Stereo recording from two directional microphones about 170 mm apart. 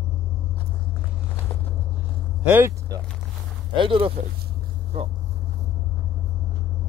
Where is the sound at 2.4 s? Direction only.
15° right (ahead or behind).